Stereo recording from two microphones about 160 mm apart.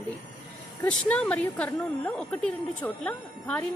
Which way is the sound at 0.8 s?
5° left (ahead or behind).